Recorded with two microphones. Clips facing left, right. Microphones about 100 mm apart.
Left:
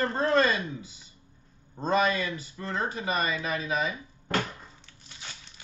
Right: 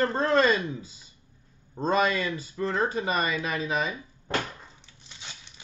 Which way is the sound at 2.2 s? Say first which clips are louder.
Right 5 dB; 35° right (ahead or behind).